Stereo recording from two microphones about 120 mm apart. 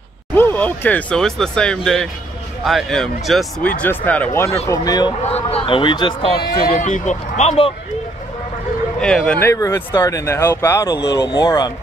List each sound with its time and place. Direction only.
0.3 s speech: 15° left (ahead or behind)
3.6 s speech: 15° left (ahead or behind)
4.6 s speech: 35° left (ahead or behind)
5.3 s speech: 50° left (ahead or behind)
6.8 s speech: 80° left; by 7.7 s 60° left (ahead or behind)
9.0 s speech: 5° left (ahead or behind)
9.4 s speech: 20° left (ahead or behind)